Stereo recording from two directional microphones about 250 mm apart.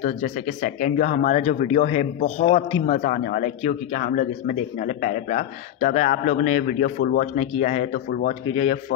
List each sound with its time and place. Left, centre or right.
0.0 s a man's voice: left